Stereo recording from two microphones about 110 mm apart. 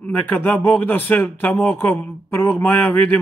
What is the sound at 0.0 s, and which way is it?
A man's voice, 15° left (ahead or behind).